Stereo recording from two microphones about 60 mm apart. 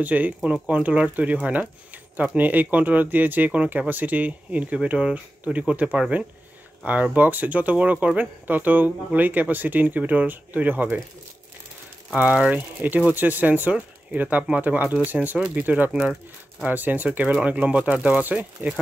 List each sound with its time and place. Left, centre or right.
0.0 s speech: right
12.5 s speech: right
15.9 s speech: centre
16.7 s speech: right